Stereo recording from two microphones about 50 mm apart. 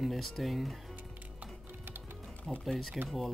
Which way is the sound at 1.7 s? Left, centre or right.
Right.